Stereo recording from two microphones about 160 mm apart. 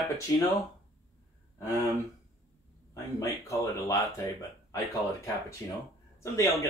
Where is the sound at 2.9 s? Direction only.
20° left (ahead or behind).